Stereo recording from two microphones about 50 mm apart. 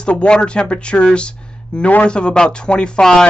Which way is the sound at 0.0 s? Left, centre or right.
Left.